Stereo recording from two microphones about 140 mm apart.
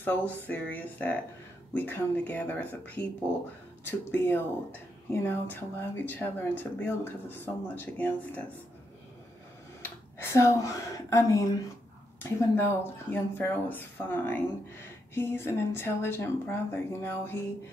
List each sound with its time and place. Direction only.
0.0 s speech: 15° left (ahead or behind)
9.8 s speech: 15° left (ahead or behind)